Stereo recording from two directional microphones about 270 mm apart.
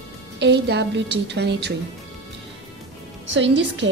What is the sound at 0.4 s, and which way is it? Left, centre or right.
A woman's voice, right.